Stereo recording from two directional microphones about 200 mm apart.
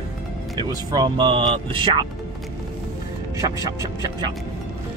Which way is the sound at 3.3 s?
15° right (ahead or behind).